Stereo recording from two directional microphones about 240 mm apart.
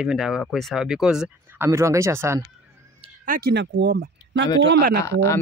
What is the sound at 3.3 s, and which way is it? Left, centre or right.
Speech, right.